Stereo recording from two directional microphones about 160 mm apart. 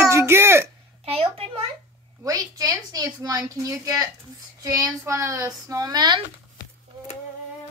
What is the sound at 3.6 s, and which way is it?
Speech, 20° right (ahead or behind).